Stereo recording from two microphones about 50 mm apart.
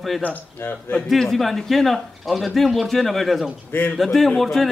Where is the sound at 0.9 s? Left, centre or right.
Centre.